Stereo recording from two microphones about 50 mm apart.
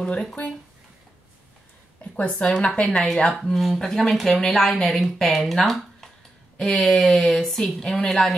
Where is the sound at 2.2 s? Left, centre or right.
Left.